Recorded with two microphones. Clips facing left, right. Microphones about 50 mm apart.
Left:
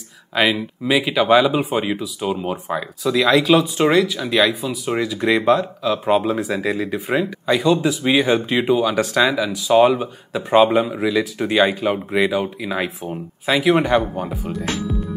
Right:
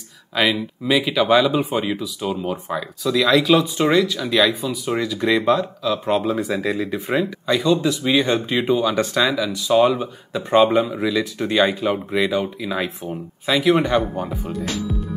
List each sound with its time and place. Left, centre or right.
0.4 s speech: centre
4.4 s speech: centre